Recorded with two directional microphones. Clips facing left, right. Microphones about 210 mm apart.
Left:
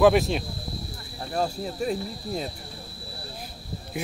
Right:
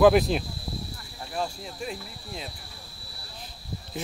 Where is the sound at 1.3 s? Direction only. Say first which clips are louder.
Left 5 dB; 40° left (ahead or behind).